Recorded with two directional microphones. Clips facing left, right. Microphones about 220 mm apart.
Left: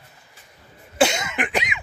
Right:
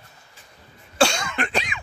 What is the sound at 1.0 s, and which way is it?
Cough, 20° left (ahead or behind).